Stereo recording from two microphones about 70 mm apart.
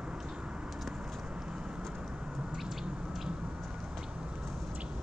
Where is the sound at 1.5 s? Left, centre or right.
Centre.